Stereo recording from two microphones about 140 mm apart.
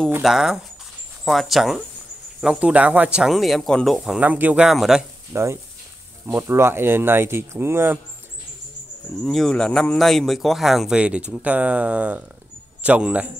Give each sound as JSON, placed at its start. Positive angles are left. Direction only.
{"t": 0.2, "sound": "speech", "side_deg": -5}
{"t": 5.3, "sound": "speech", "side_deg": -20}
{"t": 9.2, "sound": "speech", "side_deg": 0}